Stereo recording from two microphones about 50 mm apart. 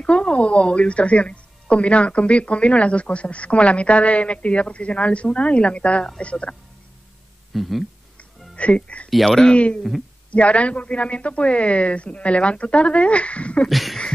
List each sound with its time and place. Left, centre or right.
0.0 s speech: left
7.5 s speech: centre
8.2 s music: left
9.1 s speech: centre
9.5 s speech: left
13.7 s speech: centre